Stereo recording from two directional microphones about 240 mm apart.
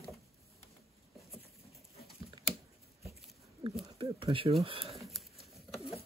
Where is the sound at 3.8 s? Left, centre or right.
Right.